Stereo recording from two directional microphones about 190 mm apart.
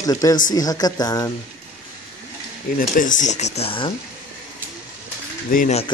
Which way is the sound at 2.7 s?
45° left (ahead or behind).